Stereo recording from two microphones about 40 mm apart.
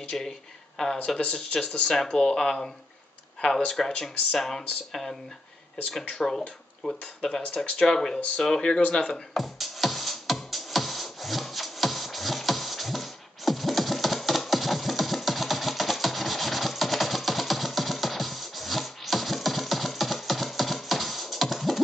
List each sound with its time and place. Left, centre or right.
0.1 s speech: centre
9.3 s music: centre